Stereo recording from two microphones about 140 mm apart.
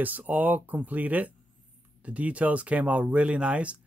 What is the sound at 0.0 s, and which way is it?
Speech, 10° right (ahead or behind).